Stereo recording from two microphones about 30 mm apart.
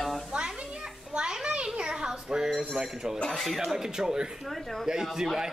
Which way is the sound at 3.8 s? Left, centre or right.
Centre.